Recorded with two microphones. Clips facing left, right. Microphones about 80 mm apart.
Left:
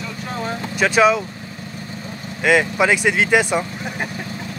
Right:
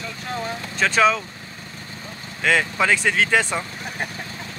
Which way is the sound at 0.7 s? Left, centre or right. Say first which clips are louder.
Left 3 dB; centre.